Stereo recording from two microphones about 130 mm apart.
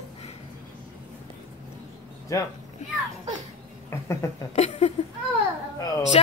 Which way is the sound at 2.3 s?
25° left (ahead or behind).